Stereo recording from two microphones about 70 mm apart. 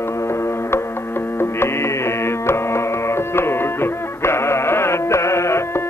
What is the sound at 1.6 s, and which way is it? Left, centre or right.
Music, left.